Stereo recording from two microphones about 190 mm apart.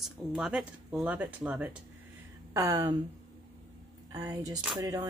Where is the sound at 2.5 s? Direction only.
15° right (ahead or behind).